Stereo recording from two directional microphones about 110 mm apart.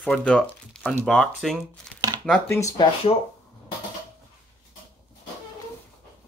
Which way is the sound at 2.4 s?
25° left (ahead or behind).